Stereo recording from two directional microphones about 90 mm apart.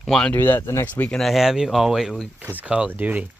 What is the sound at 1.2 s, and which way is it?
Speech, centre (ahead or behind).